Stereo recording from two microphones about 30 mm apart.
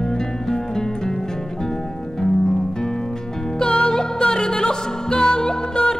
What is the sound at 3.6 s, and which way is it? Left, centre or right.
Music, left.